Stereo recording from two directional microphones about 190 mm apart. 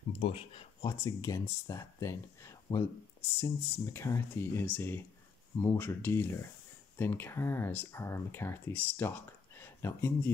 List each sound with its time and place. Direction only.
0.2 s speech: 30° left (ahead or behind); by 10.3 s 15° left (ahead or behind)